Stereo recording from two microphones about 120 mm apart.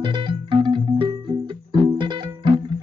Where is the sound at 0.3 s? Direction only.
40° right (ahead or behind).